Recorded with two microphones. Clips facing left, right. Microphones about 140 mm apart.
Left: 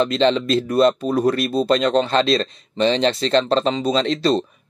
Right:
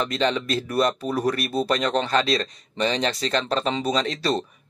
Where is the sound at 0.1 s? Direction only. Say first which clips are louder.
Left 6 dB; 25° left (ahead or behind).